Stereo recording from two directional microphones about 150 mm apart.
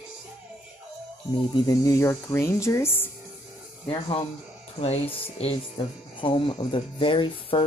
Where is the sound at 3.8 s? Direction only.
40° left (ahead or behind).